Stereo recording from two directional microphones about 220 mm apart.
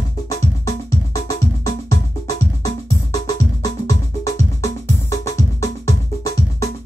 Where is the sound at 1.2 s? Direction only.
15° left (ahead or behind).